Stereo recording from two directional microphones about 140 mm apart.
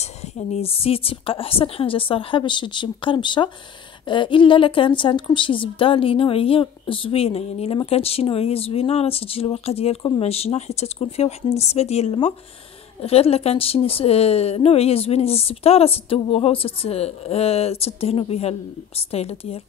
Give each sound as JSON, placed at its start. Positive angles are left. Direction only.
{"t": 0.0, "sound": "a woman's voice", "side_deg": 50}